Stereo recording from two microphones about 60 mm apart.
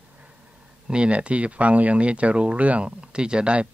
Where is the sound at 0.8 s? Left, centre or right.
Centre.